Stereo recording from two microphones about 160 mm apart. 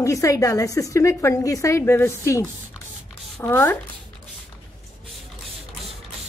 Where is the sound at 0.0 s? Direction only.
20° left (ahead or behind).